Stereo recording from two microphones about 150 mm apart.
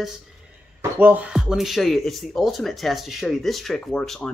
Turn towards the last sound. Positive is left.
turn(degrees=5)  # may be behind; listen again after turning